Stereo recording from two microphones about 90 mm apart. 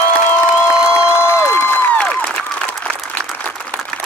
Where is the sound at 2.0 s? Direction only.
10° left (ahead or behind).